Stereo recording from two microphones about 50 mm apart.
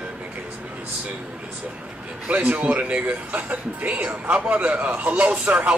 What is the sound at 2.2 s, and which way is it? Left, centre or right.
Speech, right.